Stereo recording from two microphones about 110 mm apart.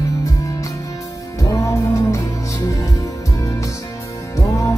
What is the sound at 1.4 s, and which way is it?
Music, 30° left (ahead or behind).